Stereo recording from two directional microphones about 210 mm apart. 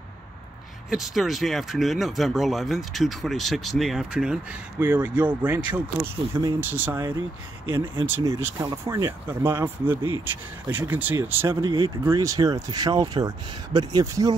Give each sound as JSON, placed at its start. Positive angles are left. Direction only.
{"t": 0.8, "sound": "speech", "side_deg": 0}